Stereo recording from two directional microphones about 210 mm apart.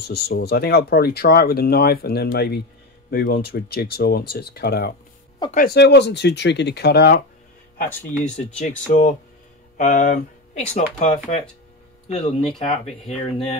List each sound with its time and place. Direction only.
0.1 s speech: 50° left (ahead or behind)
8.0 s speech: 35° left (ahead or behind)